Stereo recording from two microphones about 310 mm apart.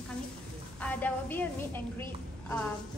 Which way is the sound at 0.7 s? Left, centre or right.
Centre.